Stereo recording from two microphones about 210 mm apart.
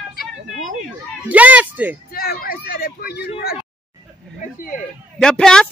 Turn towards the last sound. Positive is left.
turn(degrees=5)  # may be behind; listen again after turning